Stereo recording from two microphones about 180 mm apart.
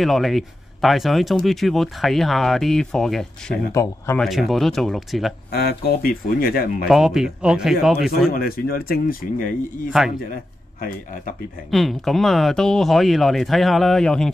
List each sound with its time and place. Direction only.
0.0 s speech: centre (ahead or behind)
3.7 s speech: 15° left (ahead or behind)
4.2 s speech: centre (ahead or behind)
5.5 s speech: 60° left (ahead or behind)
6.9 s speech: centre (ahead or behind)
8.3 s speech: 55° left (ahead or behind)
11.7 s speech: centre (ahead or behind)